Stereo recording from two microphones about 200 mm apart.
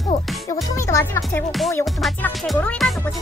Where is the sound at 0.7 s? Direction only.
15° left (ahead or behind).